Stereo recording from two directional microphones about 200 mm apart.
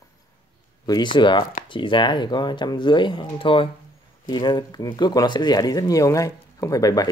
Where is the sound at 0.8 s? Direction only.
20° left (ahead or behind).